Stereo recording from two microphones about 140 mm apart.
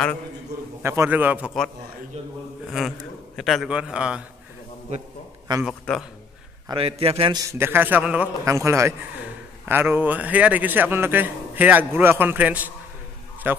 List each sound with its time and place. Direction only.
0.8 s a man's voice: 15° right (ahead or behind)
2.1 s speech: 50° right (ahead or behind)
2.7 s a man's voice: centre (ahead or behind)
5.6 s a man's voice: centre (ahead or behind)
6.7 s speech: 45° right (ahead or behind)
7.3 s a man's voice: 20° right (ahead or behind)
8.5 s a man's voice: 20° right (ahead or behind)